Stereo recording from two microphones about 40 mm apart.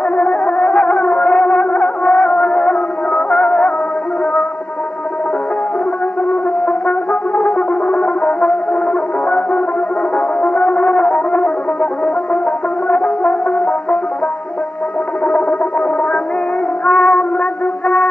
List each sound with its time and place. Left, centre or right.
0.5 s music: centre
3.1 s music: centre
6.6 s brass instrument: left
10.1 s music: left
12.8 s brass instrument: left
16.8 s music: left